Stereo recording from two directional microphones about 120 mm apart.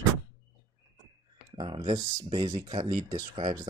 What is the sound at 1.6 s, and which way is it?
Speech, 45° right (ahead or behind).